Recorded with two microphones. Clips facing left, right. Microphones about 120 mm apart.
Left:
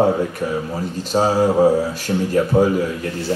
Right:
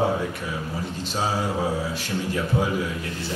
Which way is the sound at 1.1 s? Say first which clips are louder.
Left 11 dB; 45° left (ahead or behind).